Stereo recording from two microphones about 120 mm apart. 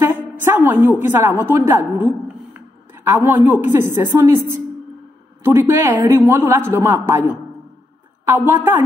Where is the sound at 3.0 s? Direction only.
20° right (ahead or behind).